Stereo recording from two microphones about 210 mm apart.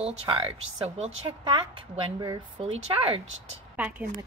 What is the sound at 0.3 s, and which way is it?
Speech, 30° right (ahead or behind).